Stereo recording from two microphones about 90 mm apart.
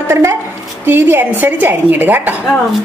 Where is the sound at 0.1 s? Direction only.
30° right (ahead or behind).